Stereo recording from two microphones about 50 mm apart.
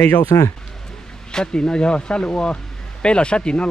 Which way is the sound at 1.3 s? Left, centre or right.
Centre.